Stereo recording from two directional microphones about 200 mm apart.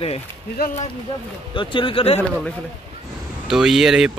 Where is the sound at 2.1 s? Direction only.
5° left (ahead or behind).